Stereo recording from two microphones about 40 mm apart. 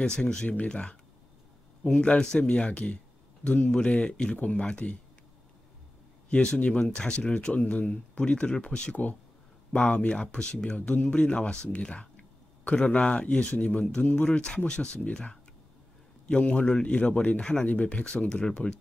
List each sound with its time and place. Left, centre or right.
0.0 s speech: left
0.7 s speech: left
4.4 s speech: left
6.3 s speech: left
16.3 s speech: left
17.4 s speech: left
17.6 s speech: left